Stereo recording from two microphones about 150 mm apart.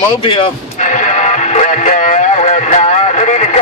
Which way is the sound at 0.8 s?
55° left (ahead or behind).